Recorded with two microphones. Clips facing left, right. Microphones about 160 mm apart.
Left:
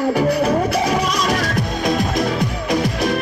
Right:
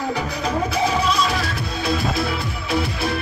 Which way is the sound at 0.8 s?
45° left (ahead or behind).